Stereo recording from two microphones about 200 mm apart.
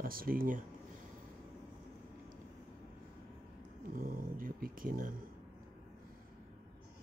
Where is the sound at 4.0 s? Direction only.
45° right (ahead or behind).